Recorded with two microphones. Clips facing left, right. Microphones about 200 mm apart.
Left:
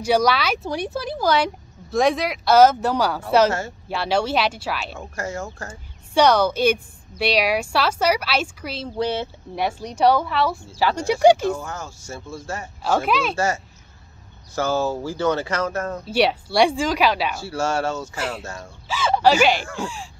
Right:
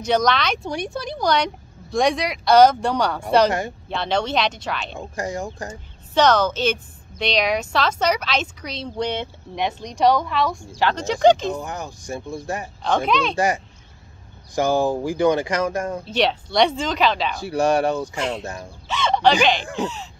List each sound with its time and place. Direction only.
0.0 s a woman's voice: 10° left (ahead or behind)
5.1 s speech: 15° right (ahead or behind)
6.1 s a woman's voice: 10° left (ahead or behind)
11.4 s speech: 15° right (ahead or behind)
12.8 s a woman's voice: 5° left (ahead or behind)
14.5 s speech: 15° right (ahead or behind)
16.1 s a woman's voice: 10° left (ahead or behind)
17.4 s speech: 15° right (ahead or behind)
18.9 s a woman's voice: 5° left (ahead or behind)